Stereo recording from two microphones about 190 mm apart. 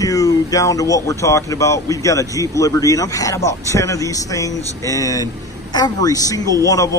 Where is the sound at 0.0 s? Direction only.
20° left (ahead or behind).